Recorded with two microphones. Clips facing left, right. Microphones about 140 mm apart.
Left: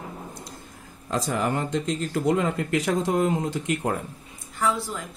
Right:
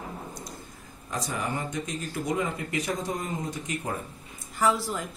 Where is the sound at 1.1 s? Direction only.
80° left.